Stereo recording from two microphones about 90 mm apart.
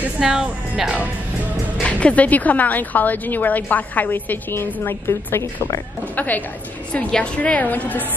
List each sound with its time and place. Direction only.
0.2 s a woman's voice: 5° right (ahead or behind)
1.8 s speech: 15° left (ahead or behind)
5.0 s a woman's voice: 30° left (ahead or behind)
6.1 s a woman's voice: 20° left (ahead or behind)